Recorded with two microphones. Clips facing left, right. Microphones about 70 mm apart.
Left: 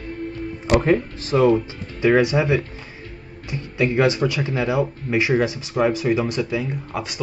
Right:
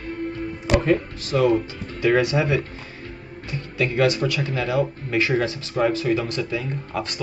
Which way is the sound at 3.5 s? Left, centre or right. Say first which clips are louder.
Left 3 dB; left.